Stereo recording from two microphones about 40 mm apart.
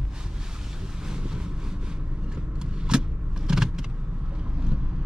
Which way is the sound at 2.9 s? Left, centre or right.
Right.